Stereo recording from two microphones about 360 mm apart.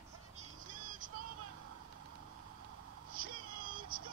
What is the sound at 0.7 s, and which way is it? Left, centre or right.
Vehicle, right.